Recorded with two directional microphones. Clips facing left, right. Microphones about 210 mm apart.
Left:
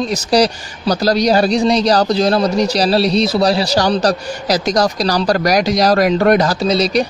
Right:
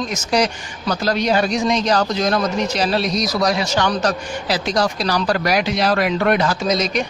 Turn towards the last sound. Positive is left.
turn(degrees=35)  # may be behind; listen again after turning